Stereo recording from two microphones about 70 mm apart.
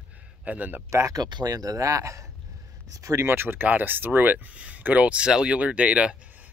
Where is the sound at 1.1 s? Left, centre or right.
Right.